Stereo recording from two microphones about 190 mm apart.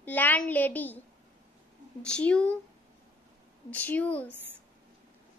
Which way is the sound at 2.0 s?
5° left (ahead or behind).